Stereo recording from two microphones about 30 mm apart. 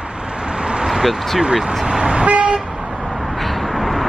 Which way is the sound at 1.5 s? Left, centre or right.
Centre.